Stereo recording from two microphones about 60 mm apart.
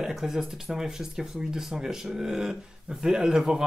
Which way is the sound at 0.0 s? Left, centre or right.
Centre.